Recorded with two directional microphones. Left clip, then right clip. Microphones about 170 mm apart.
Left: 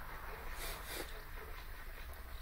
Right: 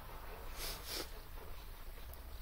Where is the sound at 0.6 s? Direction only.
Centre (ahead or behind).